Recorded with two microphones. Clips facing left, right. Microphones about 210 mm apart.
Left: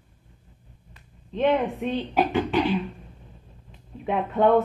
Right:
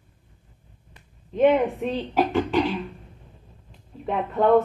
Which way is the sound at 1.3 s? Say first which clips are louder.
Right 4 dB; 10° right (ahead or behind).